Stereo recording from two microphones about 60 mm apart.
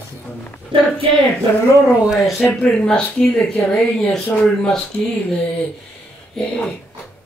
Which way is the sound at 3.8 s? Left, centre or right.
Centre.